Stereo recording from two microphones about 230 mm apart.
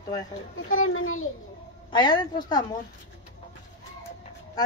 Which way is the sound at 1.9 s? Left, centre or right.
Centre.